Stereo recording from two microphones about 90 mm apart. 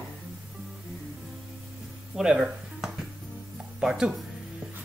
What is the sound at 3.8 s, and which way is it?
Speech, 5° right (ahead or behind).